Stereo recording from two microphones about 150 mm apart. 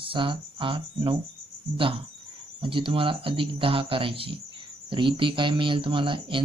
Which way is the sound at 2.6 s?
35° right (ahead or behind).